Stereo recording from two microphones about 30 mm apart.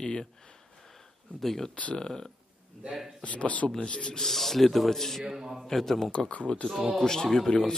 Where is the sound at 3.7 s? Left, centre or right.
Left.